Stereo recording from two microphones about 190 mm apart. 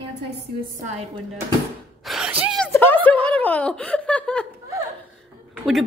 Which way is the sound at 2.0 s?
5° right (ahead or behind).